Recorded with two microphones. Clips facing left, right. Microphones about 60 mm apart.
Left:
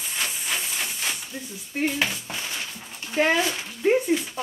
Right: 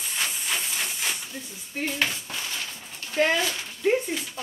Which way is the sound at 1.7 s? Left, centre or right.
Centre.